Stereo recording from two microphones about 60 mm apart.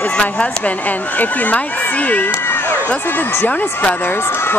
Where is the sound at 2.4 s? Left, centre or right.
Left.